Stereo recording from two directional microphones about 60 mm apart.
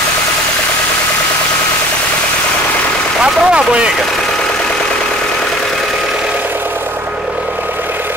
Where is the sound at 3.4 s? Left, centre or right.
Centre.